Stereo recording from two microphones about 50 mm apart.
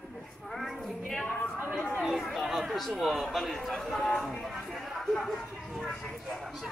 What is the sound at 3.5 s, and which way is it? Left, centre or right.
Speech, centre.